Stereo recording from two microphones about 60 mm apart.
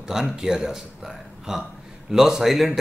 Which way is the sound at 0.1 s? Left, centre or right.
Centre.